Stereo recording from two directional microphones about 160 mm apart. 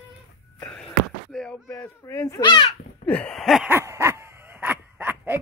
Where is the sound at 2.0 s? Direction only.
15° left (ahead or behind).